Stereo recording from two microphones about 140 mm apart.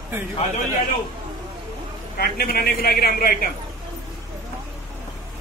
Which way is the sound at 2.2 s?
90° left.